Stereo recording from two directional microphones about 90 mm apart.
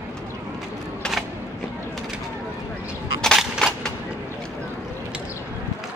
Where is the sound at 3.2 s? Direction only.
5° left (ahead or behind).